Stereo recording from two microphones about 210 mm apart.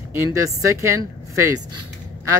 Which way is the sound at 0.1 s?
15° right (ahead or behind).